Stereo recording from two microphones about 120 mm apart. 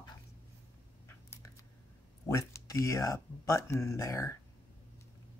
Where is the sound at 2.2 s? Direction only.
25° left (ahead or behind).